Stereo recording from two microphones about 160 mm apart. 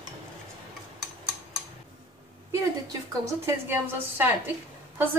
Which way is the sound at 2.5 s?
20° right (ahead or behind).